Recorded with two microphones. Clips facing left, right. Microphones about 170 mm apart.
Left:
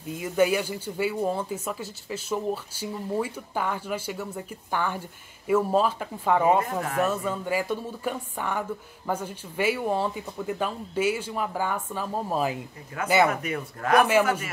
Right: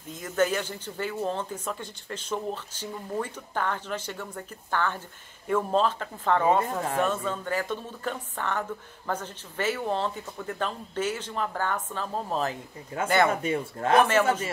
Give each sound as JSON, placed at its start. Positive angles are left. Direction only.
{"t": 0.1, "sound": "speech", "side_deg": 10}
{"t": 12.9, "sound": "speech", "side_deg": -30}